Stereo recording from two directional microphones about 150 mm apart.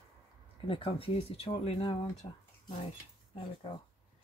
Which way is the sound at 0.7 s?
35° left (ahead or behind).